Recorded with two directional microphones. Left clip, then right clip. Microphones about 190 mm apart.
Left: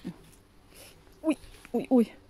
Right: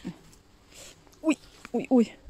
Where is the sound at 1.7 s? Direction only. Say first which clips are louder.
Right 1 dB; 10° right (ahead or behind).